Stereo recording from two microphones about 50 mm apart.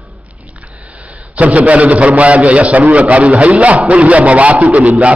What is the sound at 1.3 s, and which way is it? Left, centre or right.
A man's voice, right.